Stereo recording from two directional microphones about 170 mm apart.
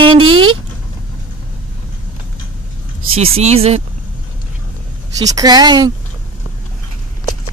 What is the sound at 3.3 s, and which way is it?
Speech, 35° right (ahead or behind).